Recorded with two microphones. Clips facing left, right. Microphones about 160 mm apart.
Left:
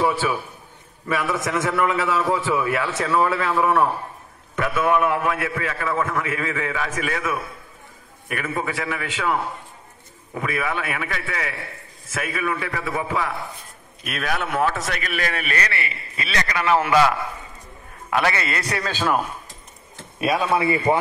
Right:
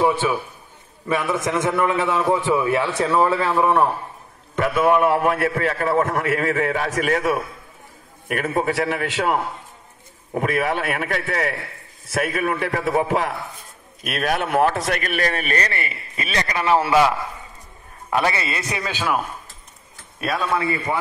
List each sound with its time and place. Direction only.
0.2 s a man's voice: 20° right (ahead or behind)
5.0 s speech: 40° right (ahead or behind)
16.4 s a man's voice: 25° right (ahead or behind)
18.1 s a man's voice: 25° right (ahead or behind)
20.2 s speech: 5° left (ahead or behind)
20.5 s a man's voice: 15° left (ahead or behind)